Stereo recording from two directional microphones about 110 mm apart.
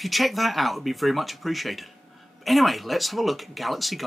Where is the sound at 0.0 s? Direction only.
Centre (ahead or behind).